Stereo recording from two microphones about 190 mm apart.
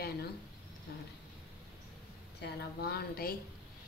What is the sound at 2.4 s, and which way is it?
Speech, 55° left (ahead or behind).